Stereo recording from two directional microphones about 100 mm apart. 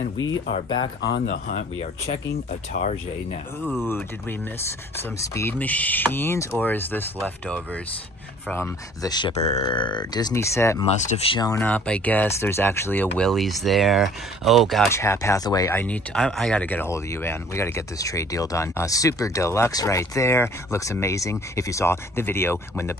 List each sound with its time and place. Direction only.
0.7 s speech: 45° left (ahead or behind)
3.8 s speech: 25° left (ahead or behind)
8.5 s speech: 25° left (ahead or behind)
9.0 s speech: 45° left (ahead or behind)
9.3 s speech: 60° left (ahead or behind)
10.3 s speech: 30° left (ahead or behind)
11.6 s speech: 10° left (ahead or behind)
13.3 s speech: centre (ahead or behind)
14.9 s speech: 30° left (ahead or behind)
15.7 s speech: 15° left (ahead or behind)